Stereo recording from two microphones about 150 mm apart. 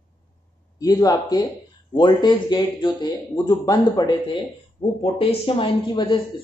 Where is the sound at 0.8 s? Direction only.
25° left (ahead or behind).